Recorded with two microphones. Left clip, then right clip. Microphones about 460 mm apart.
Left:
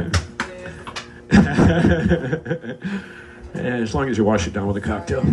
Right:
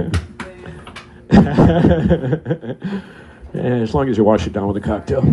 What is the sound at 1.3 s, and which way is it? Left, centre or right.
Chuckle, centre.